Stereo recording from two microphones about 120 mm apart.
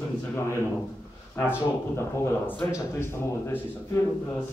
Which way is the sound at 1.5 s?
20° left (ahead or behind).